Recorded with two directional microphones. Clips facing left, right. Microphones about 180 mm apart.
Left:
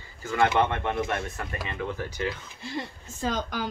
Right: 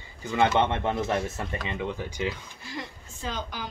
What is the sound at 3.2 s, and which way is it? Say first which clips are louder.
Speech: left 5 dB; 45° left (ahead or behind).